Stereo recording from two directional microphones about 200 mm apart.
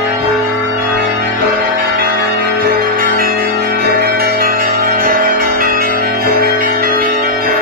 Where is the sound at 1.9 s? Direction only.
50° right (ahead or behind).